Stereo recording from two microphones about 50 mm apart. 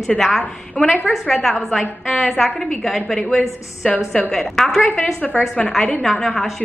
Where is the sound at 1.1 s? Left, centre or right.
Centre.